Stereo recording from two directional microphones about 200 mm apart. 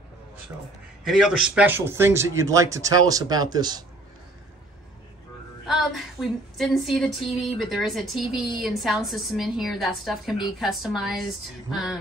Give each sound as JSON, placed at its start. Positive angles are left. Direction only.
{"t": 1.0, "sound": "speech", "side_deg": -5}
{"t": 5.7, "sound": "a woman's voice", "side_deg": 0}